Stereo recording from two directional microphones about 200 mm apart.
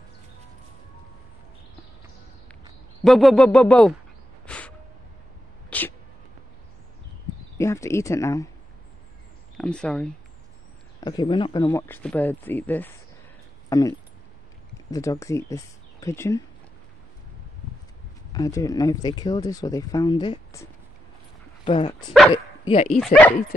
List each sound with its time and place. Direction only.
3.0 s a sound: centre (ahead or behind)
7.5 s speech: 15° left (ahead or behind)
9.6 s a sound: 5° left (ahead or behind)
11.0 s speech: 20° left (ahead or behind)
18.3 s speech: 20° left (ahead or behind)
21.6 s speech: 25° left (ahead or behind)